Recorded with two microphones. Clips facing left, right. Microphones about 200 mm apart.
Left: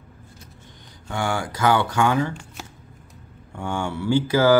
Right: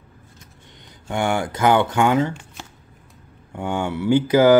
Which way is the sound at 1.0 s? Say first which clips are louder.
Right 4 dB; 20° right (ahead or behind).